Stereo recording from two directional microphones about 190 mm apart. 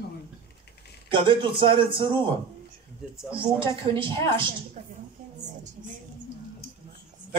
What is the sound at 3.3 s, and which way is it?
Speech, 25° right (ahead or behind).